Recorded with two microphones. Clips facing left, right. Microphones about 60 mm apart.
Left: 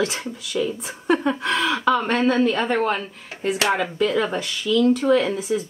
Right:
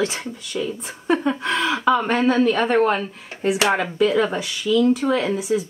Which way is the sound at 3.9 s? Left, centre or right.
Centre.